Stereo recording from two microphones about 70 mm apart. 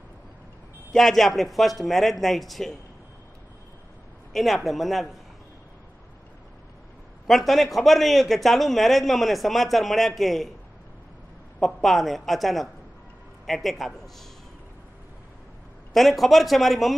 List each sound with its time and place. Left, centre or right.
0.9 s a man's voice: centre
4.3 s a man's voice: centre
7.2 s a man's voice: centre
11.6 s a man's voice: centre
15.9 s a man's voice: centre